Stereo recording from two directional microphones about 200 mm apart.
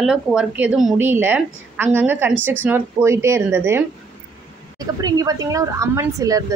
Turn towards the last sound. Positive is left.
turn(degrees=-15)  # may be behind; listen again after turning